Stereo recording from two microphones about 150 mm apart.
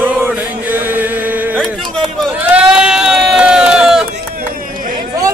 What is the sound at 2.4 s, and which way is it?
Sheep, 5° right (ahead or behind).